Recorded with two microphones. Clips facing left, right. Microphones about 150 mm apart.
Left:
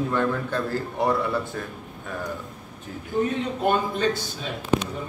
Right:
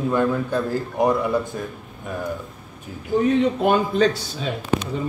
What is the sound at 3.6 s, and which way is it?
Speech, 90° right.